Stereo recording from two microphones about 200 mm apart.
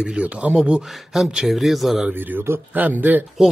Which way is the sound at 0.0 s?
5° right (ahead or behind).